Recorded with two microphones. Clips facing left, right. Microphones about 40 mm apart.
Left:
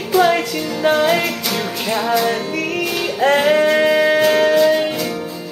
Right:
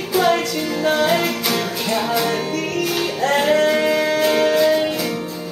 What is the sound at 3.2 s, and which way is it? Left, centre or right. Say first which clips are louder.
Music: left 3 dB; left.